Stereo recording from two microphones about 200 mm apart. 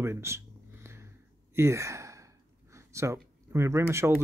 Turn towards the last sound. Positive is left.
turn(degrees=-15)  # may be behind; listen again after turning